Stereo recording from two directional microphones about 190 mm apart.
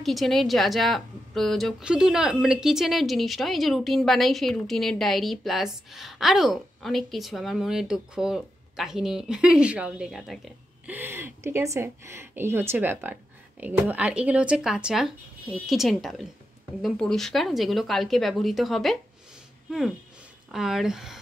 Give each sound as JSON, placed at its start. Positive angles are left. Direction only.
{"t": 0.0, "sound": "speech", "side_deg": 0}
{"t": 11.0, "sound": "a woman's voice", "side_deg": -10}
{"t": 20.5, "sound": "speech", "side_deg": 0}